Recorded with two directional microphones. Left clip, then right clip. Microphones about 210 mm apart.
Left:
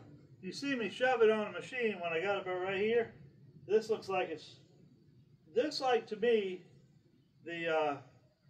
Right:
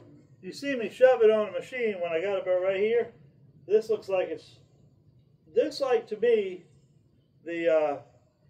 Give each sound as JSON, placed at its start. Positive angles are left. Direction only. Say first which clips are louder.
{"t": 0.4, "sound": "a man's voice", "louder": "right 6 dB", "side_deg": 10}
{"t": 5.5, "sound": "a man's voice", "louder": "right 6 dB", "side_deg": 15}
{"t": 7.4, "sound": "a man's voice", "louder": "right 9 dB", "side_deg": 15}